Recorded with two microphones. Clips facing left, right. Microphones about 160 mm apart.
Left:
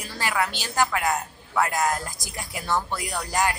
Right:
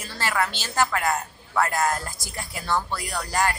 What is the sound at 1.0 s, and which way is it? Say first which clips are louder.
Speech: even; centre (ahead or behind).